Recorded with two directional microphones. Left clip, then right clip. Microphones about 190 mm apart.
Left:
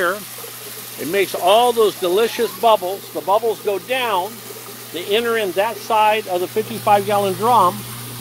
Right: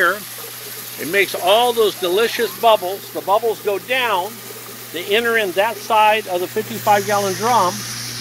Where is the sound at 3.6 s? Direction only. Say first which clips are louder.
Right 1 dB; centre (ahead or behind).